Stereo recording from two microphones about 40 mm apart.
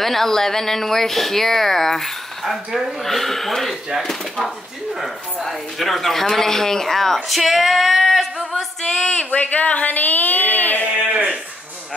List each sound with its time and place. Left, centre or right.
0.0 s speech: centre
7.2 s speech: centre
8.9 s speech: centre
9.2 s speech: left
11.1 s sheep: right